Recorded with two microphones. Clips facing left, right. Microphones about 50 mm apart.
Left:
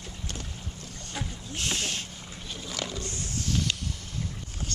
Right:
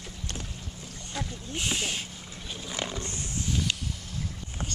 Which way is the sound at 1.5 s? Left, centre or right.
Centre.